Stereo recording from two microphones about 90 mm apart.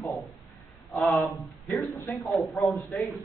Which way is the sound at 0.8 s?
Centre (ahead or behind).